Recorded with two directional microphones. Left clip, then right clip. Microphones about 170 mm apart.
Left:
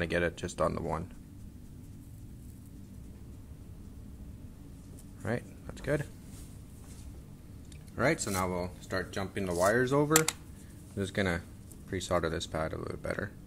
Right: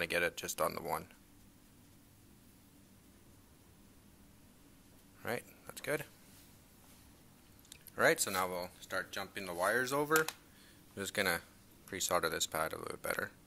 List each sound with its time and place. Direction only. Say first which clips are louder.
0.0 s speech: left 3 dB; 15° right (ahead or behind)
5.2 s a sound: left 4 dB; 20° right (ahead or behind)
7.9 s speech: left 1 dB; 40° right (ahead or behind)
8.8 s speech: left 4 dB; 5° right (ahead or behind); by 13.3 s 25° right (ahead or behind)